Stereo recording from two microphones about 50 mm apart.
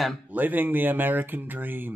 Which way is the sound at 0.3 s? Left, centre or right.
Right.